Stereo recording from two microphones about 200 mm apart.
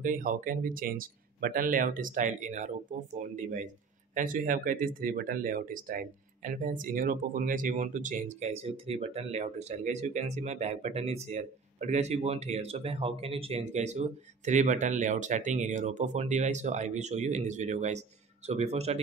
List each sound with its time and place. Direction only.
0.0 s speech: 40° right (ahead or behind)